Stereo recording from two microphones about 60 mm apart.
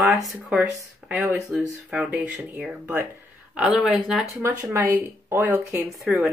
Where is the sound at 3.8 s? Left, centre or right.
Centre.